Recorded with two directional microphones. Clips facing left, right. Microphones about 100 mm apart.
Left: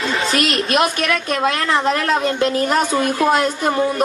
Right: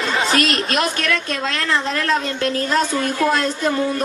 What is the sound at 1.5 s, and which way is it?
A woman's voice, 20° left (ahead or behind).